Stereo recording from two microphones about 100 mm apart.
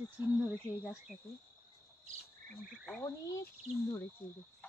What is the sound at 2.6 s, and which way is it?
Frog, centre (ahead or behind).